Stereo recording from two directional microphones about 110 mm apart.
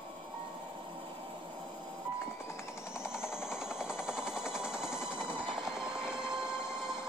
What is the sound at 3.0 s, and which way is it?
Jackhammer, 5° right (ahead or behind).